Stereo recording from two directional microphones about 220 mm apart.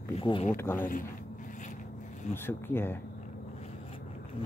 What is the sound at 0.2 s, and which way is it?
Speech, 25° left (ahead or behind).